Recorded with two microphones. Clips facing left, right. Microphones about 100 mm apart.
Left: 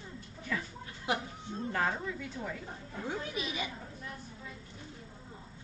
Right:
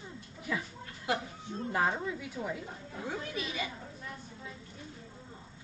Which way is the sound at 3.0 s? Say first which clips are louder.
Even; 20° left (ahead or behind).